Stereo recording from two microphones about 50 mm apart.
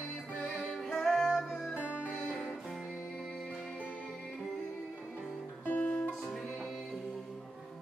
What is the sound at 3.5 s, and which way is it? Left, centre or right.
Music, centre.